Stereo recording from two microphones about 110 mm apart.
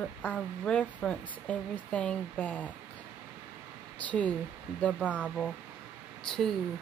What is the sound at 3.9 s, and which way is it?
Speech, 15° left (ahead or behind).